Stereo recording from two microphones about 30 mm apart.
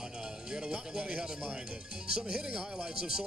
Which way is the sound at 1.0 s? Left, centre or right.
Right.